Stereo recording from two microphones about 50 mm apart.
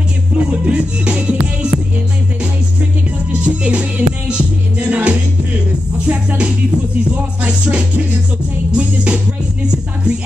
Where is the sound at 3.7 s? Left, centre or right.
Right.